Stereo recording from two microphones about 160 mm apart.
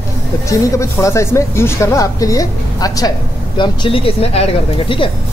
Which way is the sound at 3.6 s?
35° left (ahead or behind).